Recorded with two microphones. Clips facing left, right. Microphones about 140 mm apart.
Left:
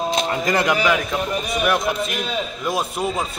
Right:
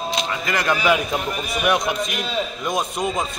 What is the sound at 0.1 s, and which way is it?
Music, 45° left (ahead or behind).